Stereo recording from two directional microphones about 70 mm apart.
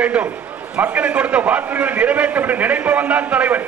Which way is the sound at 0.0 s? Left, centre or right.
Centre.